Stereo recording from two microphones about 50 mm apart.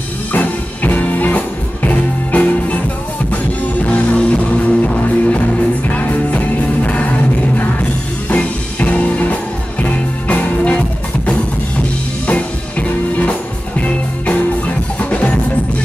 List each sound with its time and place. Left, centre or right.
0.3 s music: left
3.8 s music: left
12.3 s music: left